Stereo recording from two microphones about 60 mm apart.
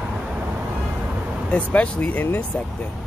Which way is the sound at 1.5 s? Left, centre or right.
Left.